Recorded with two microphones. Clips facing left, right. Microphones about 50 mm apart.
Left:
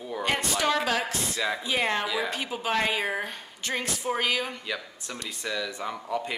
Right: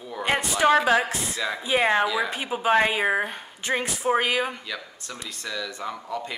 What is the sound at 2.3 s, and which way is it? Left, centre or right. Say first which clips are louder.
Speech: right 6 dB; centre.